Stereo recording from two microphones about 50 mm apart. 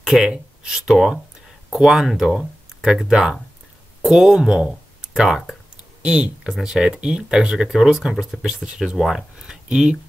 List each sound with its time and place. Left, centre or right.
0.0 s speech: centre
6.5 s speech: centre